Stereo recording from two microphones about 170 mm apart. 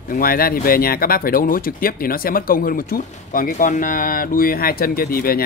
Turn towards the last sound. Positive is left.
turn(degrees=60)  # may be behind; listen again after turning